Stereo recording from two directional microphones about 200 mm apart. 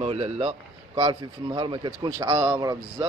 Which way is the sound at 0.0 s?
30° right (ahead or behind).